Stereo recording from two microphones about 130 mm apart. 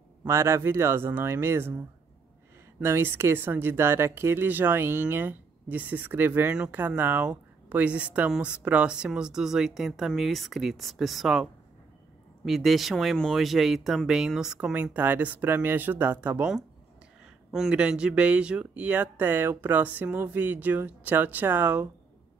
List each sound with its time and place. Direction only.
0.2 s speech: 20° right (ahead or behind)
2.8 s speech: 20° right (ahead or behind); by 11.4 s centre (ahead or behind)
12.4 s speech: centre (ahead or behind)